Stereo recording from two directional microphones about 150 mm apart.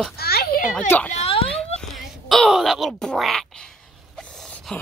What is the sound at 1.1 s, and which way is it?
Speech, 40° left (ahead or behind).